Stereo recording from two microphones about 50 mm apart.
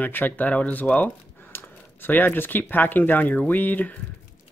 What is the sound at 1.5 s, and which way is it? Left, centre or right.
Speech, left.